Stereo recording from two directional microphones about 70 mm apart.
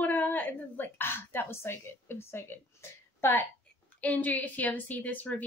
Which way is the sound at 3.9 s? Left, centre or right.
Left.